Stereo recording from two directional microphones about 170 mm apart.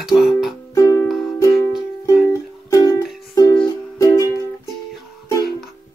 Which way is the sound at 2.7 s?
20° left (ahead or behind).